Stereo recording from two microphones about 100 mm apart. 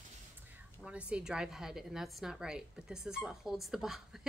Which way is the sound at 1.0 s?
10° right (ahead or behind).